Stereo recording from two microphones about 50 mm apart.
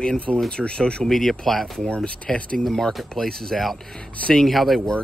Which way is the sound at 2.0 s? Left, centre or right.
Left.